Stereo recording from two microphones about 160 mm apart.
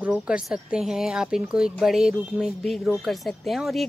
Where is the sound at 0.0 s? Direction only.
5° right (ahead or behind).